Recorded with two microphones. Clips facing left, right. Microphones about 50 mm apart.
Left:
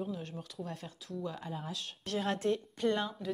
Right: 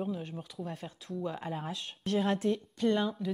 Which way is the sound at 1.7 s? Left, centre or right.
Centre.